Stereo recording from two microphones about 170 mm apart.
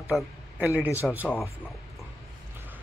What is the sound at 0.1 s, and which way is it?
Speech, 10° right (ahead or behind).